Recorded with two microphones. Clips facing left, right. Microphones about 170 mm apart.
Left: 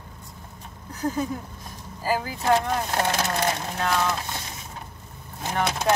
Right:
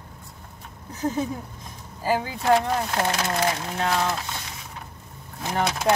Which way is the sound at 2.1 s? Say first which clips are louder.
Right 2 dB; 20° right (ahead or behind).